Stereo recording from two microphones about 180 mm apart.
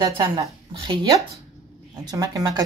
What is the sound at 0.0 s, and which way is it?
Speech, 20° right (ahead or behind).